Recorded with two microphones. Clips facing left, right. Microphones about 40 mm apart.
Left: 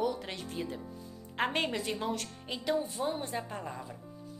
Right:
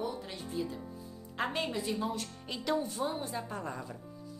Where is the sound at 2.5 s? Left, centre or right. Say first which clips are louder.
Left 1 dB; left.